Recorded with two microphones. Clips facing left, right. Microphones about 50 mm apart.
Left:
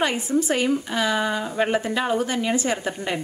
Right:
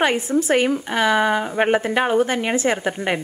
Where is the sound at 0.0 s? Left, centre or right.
Right.